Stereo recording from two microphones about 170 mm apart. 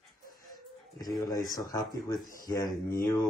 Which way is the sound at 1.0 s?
20° left (ahead or behind).